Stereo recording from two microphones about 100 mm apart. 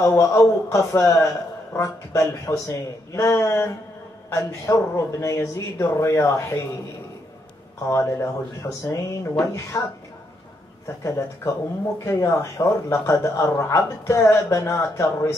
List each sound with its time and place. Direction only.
0.0 s speech: 30° left (ahead or behind)
7.9 s speech: 30° left (ahead or behind)
11.1 s speech: 30° left (ahead or behind)